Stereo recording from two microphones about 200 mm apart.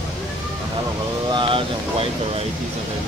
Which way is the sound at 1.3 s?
25° right (ahead or behind).